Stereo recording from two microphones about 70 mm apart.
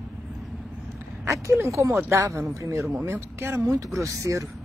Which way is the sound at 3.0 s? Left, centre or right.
Right.